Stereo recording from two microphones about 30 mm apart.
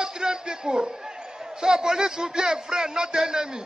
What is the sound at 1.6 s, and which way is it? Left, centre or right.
A man's voice, right.